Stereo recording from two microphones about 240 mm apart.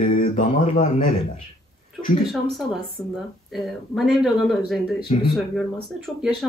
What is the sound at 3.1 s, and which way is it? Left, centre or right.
Speech, centre.